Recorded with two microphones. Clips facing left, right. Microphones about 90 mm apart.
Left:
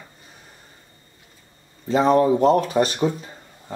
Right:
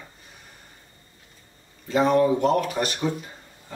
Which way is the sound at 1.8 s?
30° left (ahead or behind).